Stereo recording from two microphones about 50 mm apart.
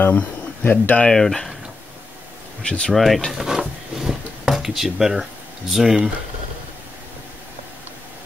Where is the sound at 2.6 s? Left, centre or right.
Left.